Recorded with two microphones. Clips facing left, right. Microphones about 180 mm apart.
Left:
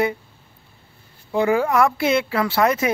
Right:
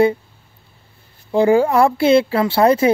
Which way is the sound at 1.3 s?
30° right (ahead or behind).